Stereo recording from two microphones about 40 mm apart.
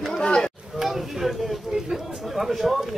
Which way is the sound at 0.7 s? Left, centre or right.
Centre.